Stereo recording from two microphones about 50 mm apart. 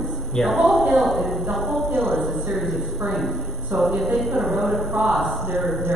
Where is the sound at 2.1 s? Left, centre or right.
Right.